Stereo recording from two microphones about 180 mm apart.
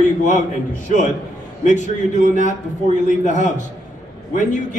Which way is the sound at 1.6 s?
40° left (ahead or behind).